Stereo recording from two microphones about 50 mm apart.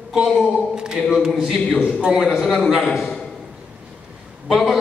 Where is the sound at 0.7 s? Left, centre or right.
Centre.